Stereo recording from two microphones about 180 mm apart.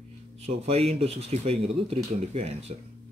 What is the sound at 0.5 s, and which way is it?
A man's voice, 35° right (ahead or behind).